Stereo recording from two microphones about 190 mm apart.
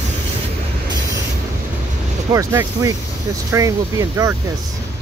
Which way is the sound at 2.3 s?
15° right (ahead or behind).